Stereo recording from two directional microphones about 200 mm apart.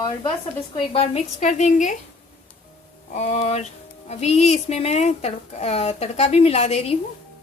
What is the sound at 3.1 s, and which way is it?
Speech, 35° left (ahead or behind).